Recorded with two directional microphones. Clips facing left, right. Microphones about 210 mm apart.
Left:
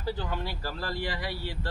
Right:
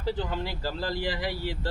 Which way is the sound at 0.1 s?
20° right (ahead or behind).